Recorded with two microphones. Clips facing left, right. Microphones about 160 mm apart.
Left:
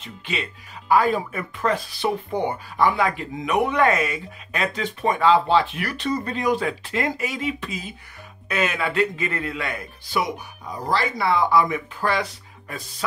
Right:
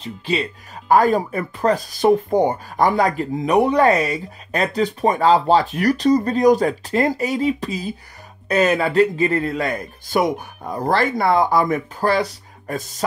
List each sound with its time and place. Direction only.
0.0 s speech: 35° right (ahead or behind)